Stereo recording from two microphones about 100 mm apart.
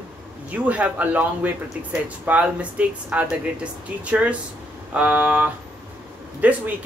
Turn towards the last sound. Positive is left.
turn(degrees=-15)  # may be behind; listen again after turning